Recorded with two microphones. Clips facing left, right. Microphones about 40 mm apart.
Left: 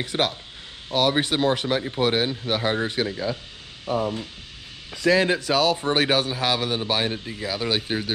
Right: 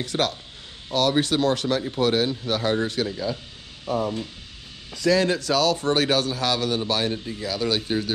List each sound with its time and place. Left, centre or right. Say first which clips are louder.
0.0 s a man's voice: even; centre
4.9 s a man's voice: left 1 dB; left